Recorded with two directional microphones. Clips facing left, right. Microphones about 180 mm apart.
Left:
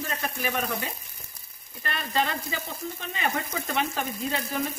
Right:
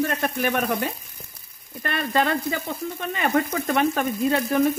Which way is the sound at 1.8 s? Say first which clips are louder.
Right 5 dB; 55° right (ahead or behind).